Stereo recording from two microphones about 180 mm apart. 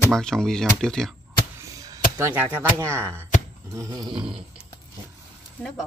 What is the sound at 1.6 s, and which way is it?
Speech, 20° right (ahead or behind).